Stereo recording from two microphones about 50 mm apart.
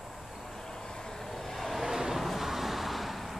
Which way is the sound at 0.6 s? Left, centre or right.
Centre.